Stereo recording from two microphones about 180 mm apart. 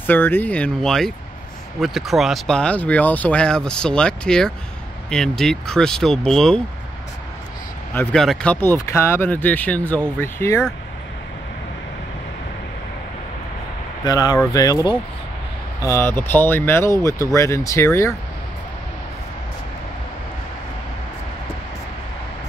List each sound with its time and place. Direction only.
0.0 s speech: 10° left (ahead or behind)
7.9 s speech: 10° left (ahead or behind)
14.0 s speech: 20° left (ahead or behind)